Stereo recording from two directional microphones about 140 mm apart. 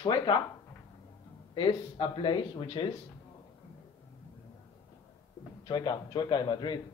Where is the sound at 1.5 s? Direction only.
35° left (ahead or behind).